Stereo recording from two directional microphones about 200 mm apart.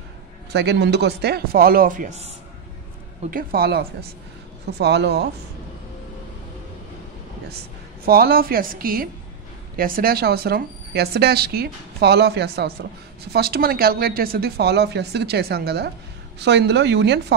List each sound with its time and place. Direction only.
0.5 s speech: 55° right (ahead or behind); by 2.3 s 35° right (ahead or behind)
3.3 s speech: 45° right (ahead or behind)
8.0 s speech: 50° right (ahead or behind)